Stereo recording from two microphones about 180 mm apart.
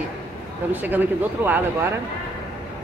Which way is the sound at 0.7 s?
10° right (ahead or behind).